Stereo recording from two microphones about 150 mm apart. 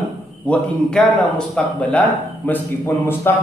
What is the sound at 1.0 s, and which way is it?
A man's voice, 5° left (ahead or behind).